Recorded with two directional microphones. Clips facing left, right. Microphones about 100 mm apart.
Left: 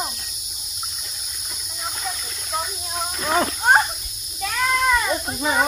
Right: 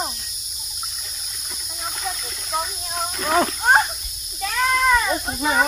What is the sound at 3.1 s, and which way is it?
Speech, centre (ahead or behind).